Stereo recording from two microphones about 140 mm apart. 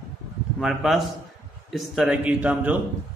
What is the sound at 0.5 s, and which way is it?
A man's voice, centre (ahead or behind).